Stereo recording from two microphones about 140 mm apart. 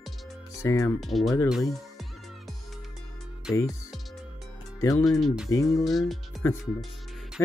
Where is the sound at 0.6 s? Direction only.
25° left (ahead or behind).